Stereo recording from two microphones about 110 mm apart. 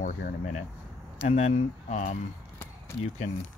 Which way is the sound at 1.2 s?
75° left (ahead or behind).